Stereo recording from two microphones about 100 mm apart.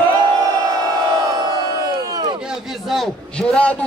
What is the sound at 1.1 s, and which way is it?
Crowd, 45° right (ahead or behind).